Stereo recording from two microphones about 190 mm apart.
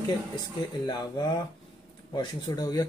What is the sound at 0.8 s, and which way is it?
Speech, 25° left (ahead or behind).